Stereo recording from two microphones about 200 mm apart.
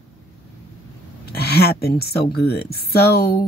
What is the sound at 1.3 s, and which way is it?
Speech, 50° left (ahead or behind).